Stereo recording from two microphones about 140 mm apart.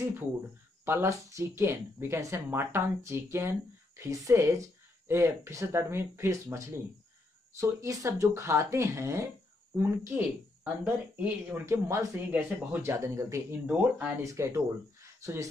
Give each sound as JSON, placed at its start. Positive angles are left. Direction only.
{"t": 0.8, "sound": "speech", "side_deg": -20}